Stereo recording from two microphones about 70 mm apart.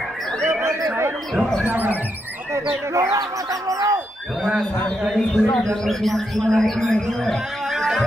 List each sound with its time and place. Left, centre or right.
0.5 s chatter: right
1.7 s speech: right
2.7 s speech: right
3.2 s fowl: right
5.1 s speech: centre
7.6 s music: centre